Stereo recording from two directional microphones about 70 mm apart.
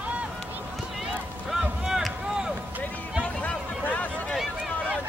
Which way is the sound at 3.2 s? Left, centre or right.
Left.